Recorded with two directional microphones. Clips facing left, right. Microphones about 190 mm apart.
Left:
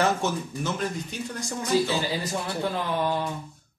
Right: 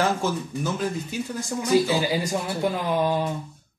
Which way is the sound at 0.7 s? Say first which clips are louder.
Right 3 dB; 5° right (ahead or behind).